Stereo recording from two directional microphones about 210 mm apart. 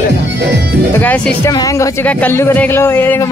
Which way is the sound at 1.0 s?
5° left (ahead or behind).